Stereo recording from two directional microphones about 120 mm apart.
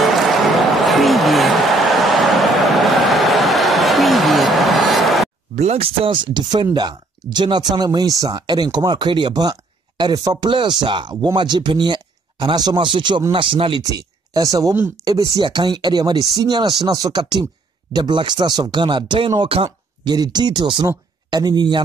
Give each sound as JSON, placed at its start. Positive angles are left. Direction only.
{"t": 0.0, "sound": "a sound", "side_deg": 0}
{"t": 2.0, "sound": "vehicle", "side_deg": 0}
{"t": 2.7, "sound": "a sound", "side_deg": 0}
{"t": 5.6, "sound": "speech", "side_deg": -60}
{"t": 6.0, "sound": "speech", "side_deg": -40}
{"t": 13.8, "sound": "speech", "side_deg": -30}